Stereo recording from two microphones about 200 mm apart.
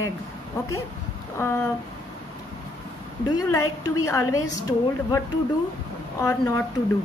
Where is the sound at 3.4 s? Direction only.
15° left (ahead or behind).